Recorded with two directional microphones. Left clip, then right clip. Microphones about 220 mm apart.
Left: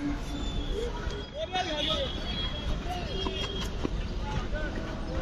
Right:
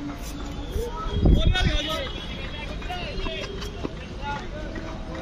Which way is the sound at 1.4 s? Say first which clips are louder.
Left 1 dB; 40° right (ahead or behind).